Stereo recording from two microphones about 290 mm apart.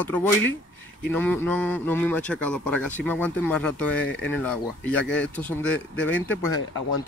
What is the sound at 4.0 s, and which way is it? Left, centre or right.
Speech, left.